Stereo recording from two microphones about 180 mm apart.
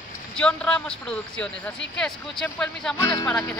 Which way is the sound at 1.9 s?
5° left (ahead or behind).